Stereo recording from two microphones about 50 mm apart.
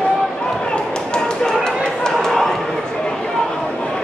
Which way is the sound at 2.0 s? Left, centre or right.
Centre.